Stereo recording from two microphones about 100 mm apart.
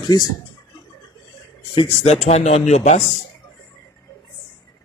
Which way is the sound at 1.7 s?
75° left (ahead or behind).